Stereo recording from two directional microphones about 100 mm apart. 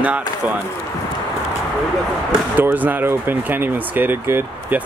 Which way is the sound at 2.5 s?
15° right (ahead or behind).